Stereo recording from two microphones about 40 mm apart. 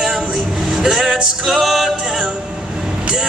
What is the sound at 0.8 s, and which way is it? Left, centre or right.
Music, centre.